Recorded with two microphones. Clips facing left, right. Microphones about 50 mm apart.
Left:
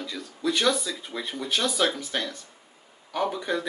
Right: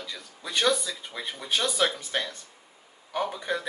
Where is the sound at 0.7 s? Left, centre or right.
Centre.